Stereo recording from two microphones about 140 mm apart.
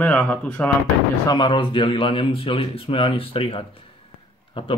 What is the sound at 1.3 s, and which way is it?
Speech, 35° left (ahead or behind).